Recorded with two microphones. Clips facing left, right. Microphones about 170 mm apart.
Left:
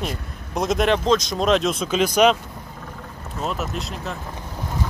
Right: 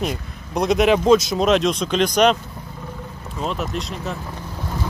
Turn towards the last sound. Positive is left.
turn(degrees=0)  # may be behind; listen again after turning